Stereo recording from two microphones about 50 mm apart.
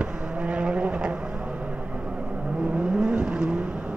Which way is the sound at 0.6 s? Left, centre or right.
Right.